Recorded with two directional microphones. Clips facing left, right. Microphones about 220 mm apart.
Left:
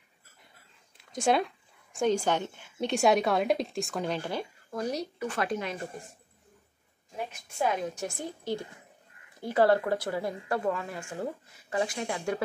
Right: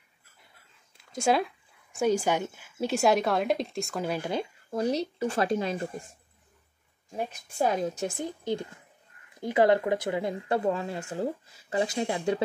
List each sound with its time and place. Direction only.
0.9 s a woman's voice: centre (ahead or behind)
4.3 s speech: 25° right (ahead or behind)
7.5 s a woman's voice: 35° right (ahead or behind)
8.0 s speech: 20° right (ahead or behind)